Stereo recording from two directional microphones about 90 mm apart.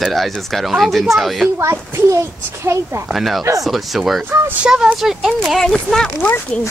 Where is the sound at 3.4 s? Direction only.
40° right (ahead or behind).